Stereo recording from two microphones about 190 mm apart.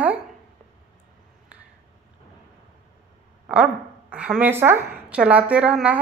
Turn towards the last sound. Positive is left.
turn(degrees=-5)  # may be behind; listen again after turning